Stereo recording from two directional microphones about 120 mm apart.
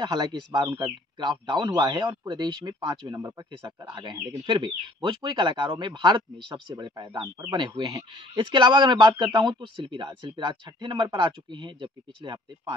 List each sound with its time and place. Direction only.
0.0 s speech: 35° right (ahead or behind)
3.3 s speech: 25° right (ahead or behind)